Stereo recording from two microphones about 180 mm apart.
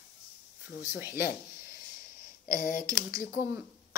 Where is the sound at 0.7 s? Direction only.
10° right (ahead or behind).